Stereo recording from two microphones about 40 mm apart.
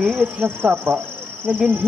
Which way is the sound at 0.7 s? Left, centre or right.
Right.